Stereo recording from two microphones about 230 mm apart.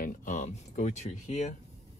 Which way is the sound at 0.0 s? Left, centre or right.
Left.